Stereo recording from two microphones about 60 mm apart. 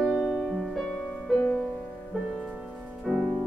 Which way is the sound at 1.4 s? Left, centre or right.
Centre.